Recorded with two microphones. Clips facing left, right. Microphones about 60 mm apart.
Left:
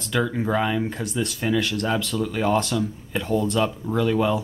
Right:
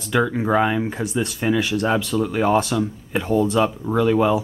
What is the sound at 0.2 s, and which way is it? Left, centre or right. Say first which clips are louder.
Speech: right 4 dB; centre.